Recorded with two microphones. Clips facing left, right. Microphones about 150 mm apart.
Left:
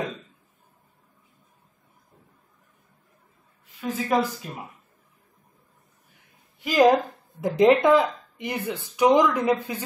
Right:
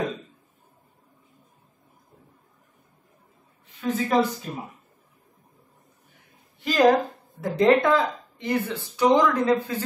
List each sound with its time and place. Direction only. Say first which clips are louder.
3.8 s speech: right 2 dB; 5° left (ahead or behind)
6.6 s a woman's voice: left 1 dB; 10° left (ahead or behind)